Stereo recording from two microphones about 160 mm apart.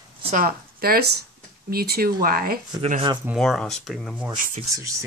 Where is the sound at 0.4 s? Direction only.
70° right (ahead or behind).